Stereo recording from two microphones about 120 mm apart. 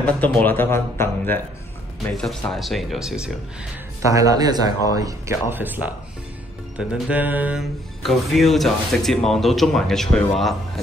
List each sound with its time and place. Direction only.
0.0 s speech: 10° left (ahead or behind)
2.2 s speech: centre (ahead or behind)
4.1 s speech: 30° right (ahead or behind)
5.5 s mantra: 15° right (ahead or behind)
6.8 s mantra: 10° right (ahead or behind)
8.0 s speech: centre (ahead or behind)